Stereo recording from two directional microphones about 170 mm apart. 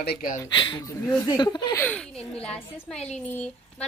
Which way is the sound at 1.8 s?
5° left (ahead or behind).